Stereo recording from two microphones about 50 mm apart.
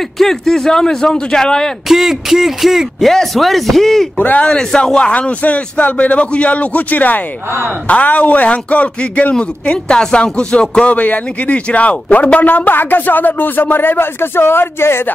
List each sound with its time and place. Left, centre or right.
0.2 s a man's voice: centre
1.9 s a man's voice: centre; by 5.3 s left
5.4 s a man's voice: left
9.3 s a man's voice: centre
11.0 s a man's voice: left